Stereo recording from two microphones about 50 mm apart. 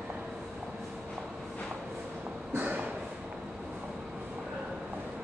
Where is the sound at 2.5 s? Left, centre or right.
Right.